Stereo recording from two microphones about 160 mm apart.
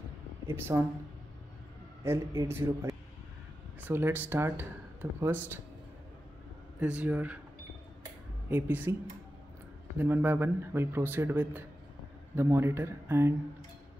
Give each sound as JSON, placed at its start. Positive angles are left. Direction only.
{"t": 0.5, "sound": "speech", "side_deg": -15}
{"t": 2.1, "sound": "speech", "side_deg": -15}
{"t": 6.8, "sound": "speech", "side_deg": -10}
{"t": 8.0, "sound": "dishes", "side_deg": -10}
{"t": 9.9, "sound": "speech", "side_deg": -10}